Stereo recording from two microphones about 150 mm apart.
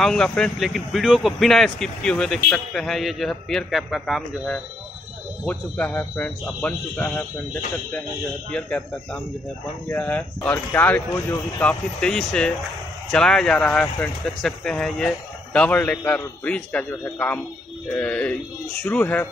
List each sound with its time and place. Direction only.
0.0 s speech: 5° left (ahead or behind)
8.5 s speech: 5° left (ahead or behind)
11.1 s speech: 20° left (ahead or behind)
11.6 s speech: 5° left (ahead or behind)